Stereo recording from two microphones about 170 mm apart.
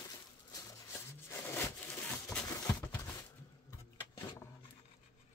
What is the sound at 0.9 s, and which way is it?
Wood, 15° left (ahead or behind).